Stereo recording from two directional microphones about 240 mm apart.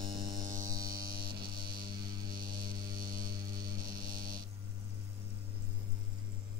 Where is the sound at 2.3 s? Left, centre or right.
Centre.